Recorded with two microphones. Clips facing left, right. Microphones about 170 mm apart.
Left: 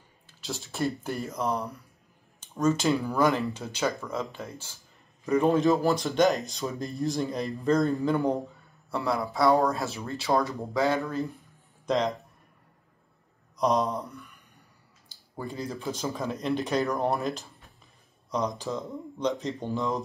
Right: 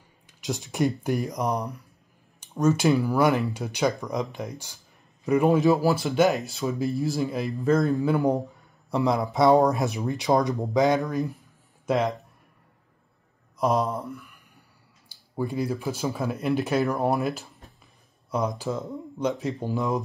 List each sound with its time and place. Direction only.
0.3 s speech: 15° right (ahead or behind)
8.9 s speech: 20° right (ahead or behind); by 12.3 s 5° right (ahead or behind)
13.6 s speech: centre (ahead or behind)
15.0 s speech: 15° right (ahead or behind)